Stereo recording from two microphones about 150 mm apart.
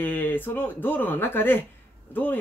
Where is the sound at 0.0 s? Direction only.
15° left (ahead or behind).